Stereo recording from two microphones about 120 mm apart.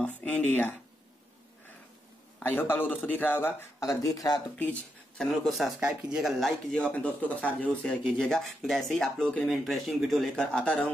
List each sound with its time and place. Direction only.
0.2 s a man's voice: 15° left (ahead or behind)
2.4 s a man's voice: 15° left (ahead or behind)
3.9 s speech: 30° left (ahead or behind)
4.6 s speech: 10° left (ahead or behind)
6.8 s speech: 10° left (ahead or behind)